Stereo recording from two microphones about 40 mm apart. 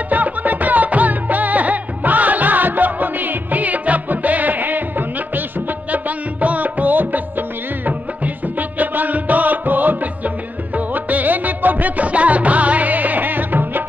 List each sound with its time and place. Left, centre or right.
0.1 s music: right
5.9 s music: right